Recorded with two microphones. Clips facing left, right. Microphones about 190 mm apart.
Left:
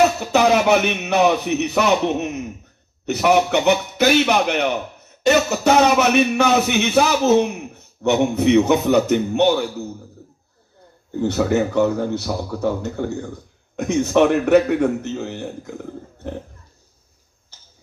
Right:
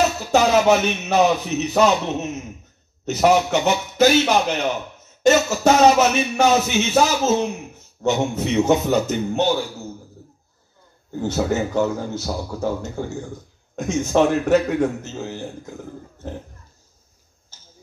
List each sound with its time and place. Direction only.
0.2 s a man's voice: 60° left (ahead or behind)
11.1 s a man's voice: 65° left (ahead or behind)